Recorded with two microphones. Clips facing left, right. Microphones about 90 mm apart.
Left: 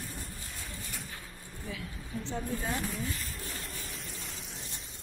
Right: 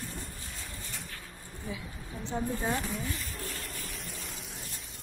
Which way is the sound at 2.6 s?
Centre (ahead or behind).